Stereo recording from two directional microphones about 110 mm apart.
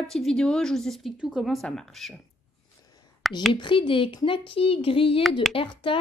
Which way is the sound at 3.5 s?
50° left (ahead or behind).